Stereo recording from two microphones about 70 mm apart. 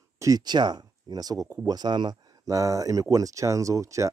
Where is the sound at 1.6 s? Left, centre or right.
Right.